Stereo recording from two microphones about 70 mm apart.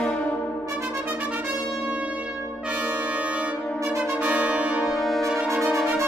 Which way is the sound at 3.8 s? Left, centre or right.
Right.